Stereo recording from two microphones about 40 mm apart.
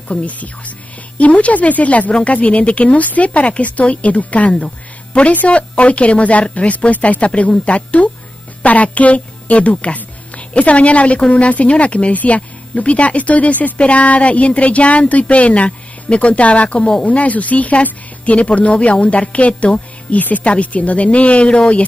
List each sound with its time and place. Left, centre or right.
0.1 s a woman's voice: left
4.5 s music: left
5.5 s a woman's voice: left